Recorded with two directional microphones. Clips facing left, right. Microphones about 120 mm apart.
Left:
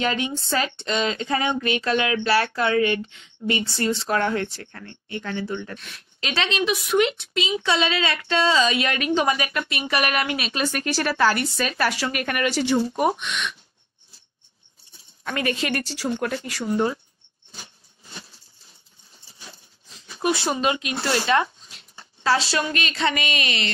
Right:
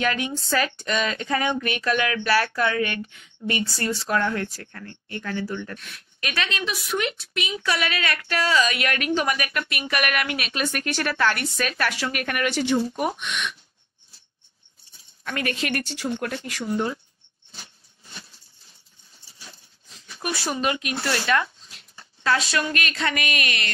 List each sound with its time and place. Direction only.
0.0 s speech: 25° left (ahead or behind)
15.2 s speech: 25° left (ahead or behind)
20.2 s speech: 25° left (ahead or behind)